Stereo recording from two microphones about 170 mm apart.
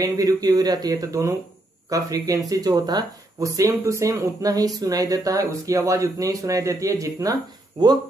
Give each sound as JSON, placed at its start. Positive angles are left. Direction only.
{"t": 0.0, "sound": "speech", "side_deg": -20}